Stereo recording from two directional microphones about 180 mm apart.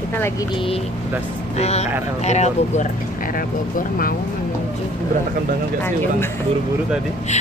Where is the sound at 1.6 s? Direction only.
35° left (ahead or behind).